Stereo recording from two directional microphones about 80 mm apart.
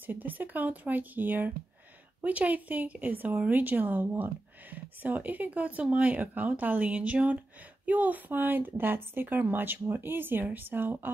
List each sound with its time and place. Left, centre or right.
0.0 s a woman's voice: right